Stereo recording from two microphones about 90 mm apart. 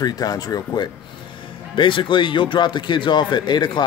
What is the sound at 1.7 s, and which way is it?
Speech, 65° left (ahead or behind).